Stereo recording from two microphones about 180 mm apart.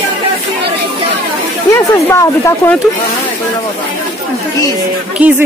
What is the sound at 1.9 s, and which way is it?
Speech, 15° left (ahead or behind).